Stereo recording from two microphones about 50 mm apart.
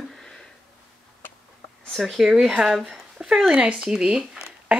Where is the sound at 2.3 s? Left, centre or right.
Centre.